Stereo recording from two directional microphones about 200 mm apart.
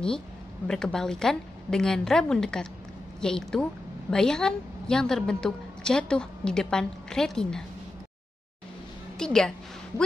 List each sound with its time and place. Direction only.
0.7 s a woman's voice: 5° left (ahead or behind)
9.2 s a woman's voice: 5° left (ahead or behind)